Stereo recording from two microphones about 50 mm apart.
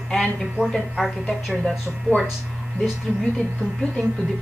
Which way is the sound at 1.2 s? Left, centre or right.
Centre.